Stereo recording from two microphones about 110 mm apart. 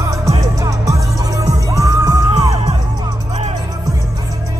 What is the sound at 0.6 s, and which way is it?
Music, 30° right (ahead or behind).